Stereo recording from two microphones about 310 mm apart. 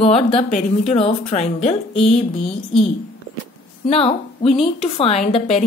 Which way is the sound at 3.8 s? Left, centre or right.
Centre.